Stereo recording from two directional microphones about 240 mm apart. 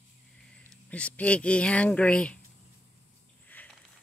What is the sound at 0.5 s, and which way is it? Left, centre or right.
Speech, centre.